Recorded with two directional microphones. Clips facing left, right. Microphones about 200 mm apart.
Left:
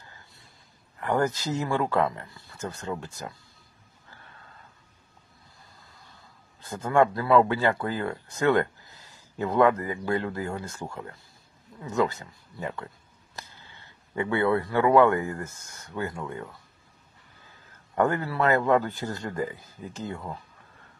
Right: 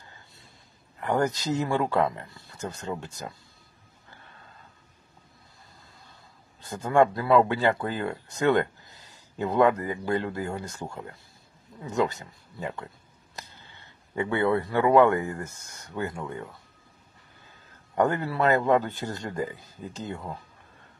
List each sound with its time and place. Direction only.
0.9 s speech: 15° right (ahead or behind)
6.8 s speech: 20° right (ahead or behind)
17.9 s speech: 20° right (ahead or behind)